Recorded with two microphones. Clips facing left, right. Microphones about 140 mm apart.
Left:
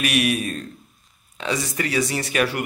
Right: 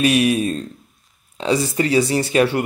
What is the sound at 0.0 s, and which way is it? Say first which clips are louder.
Speech: right 6 dB; 30° right (ahead or behind).